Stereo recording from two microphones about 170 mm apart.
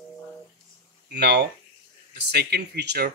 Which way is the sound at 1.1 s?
80° right.